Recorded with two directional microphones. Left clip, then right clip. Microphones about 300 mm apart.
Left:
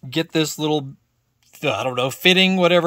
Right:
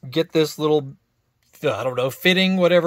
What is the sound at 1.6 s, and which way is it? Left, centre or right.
Speech, left.